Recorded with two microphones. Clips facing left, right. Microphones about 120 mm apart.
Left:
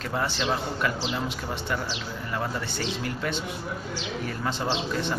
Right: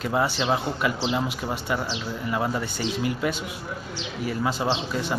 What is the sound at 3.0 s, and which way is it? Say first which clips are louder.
Speech: right 4 dB; 10° right (ahead or behind).